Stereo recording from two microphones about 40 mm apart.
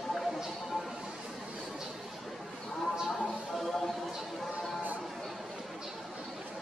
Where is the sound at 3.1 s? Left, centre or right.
Centre.